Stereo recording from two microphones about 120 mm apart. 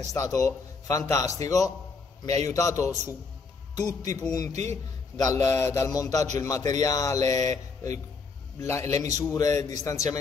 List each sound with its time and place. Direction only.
0.0 s a man's voice: 25° left (ahead or behind)
4.5 s speech: 70° right (ahead or behind)
5.1 s a man's voice: 30° left (ahead or behind)